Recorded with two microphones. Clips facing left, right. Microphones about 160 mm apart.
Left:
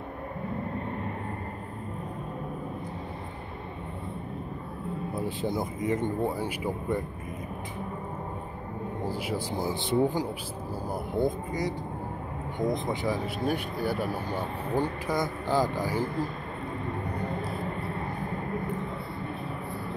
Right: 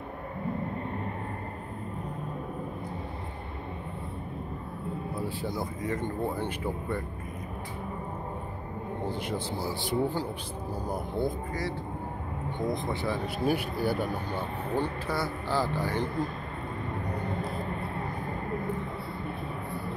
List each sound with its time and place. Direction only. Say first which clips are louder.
5.4 s speech: left 3 dB; 20° left (ahead or behind)
9.0 s speech: left 1 dB; 5° left (ahead or behind)
9.6 s speech: left 5 dB; 20° left (ahead or behind)
13.5 s speech: right 2 dB; centre (ahead or behind)